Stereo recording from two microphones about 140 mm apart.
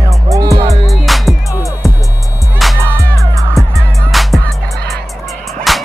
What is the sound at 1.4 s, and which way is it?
Music, 25° left (ahead or behind).